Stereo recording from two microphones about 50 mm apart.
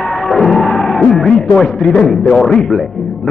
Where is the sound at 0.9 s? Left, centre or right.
Centre.